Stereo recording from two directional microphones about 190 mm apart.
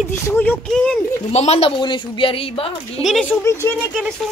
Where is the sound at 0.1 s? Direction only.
10° left (ahead or behind).